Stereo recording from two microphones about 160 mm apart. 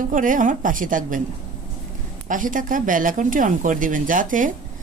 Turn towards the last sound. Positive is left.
turn(degrees=-55)  # may be behind; listen again after turning